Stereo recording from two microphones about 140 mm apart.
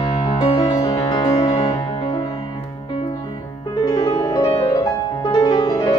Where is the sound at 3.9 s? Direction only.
30° left (ahead or behind).